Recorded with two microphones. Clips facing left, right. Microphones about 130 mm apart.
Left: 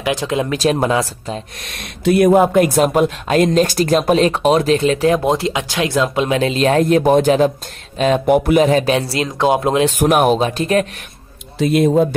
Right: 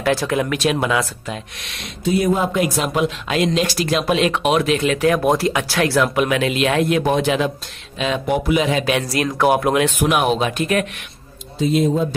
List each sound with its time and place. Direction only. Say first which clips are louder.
0.0 s speech: even; 20° left (ahead or behind)
0.6 s speech: left 3 dB; 35° left (ahead or behind)
2.0 s speech: left 7 dB; 60° left (ahead or behind); by 9.9 s 25° left (ahead or behind)
9.9 s speech: left 4 dB; 45° left (ahead or behind)
11.5 s speech: left 3 dB; 70° left (ahead or behind)